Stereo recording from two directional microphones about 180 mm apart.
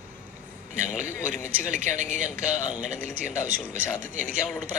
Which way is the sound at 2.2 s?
10° right (ahead or behind).